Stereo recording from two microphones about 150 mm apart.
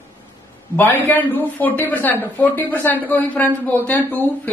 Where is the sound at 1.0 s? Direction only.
10° left (ahead or behind).